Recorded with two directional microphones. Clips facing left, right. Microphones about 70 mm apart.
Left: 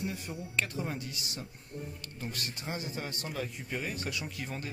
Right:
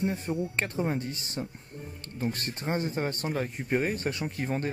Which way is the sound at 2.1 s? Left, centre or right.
Right.